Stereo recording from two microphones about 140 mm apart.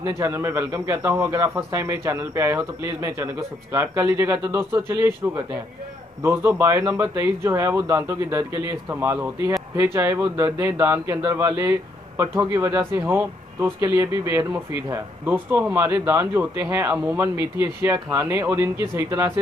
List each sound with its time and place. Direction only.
0.2 s a man's voice: 20° right (ahead or behind)